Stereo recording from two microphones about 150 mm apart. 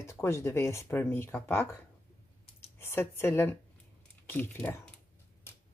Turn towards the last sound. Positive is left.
turn(degrees=15)  # may be behind; listen again after turning